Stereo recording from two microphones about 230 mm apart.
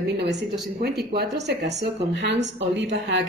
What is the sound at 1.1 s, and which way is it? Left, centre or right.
A woman's voice, right.